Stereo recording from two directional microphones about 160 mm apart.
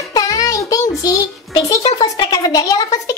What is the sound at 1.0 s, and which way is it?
A child's voice, 20° left (ahead or behind).